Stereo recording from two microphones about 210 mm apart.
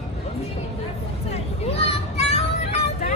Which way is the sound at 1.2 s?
30° left (ahead or behind).